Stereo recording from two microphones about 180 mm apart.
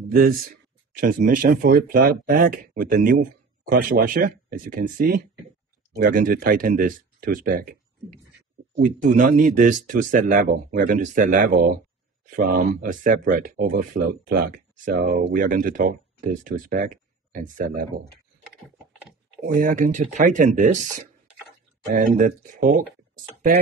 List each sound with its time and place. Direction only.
0.1 s speech: 55° right (ahead or behind)
8.7 s speech: 45° right (ahead or behind)
19.4 s speech: 45° right (ahead or behind)
21.9 s speech: 45° right (ahead or behind)